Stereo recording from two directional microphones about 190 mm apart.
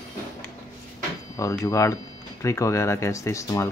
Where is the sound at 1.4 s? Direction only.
15° left (ahead or behind).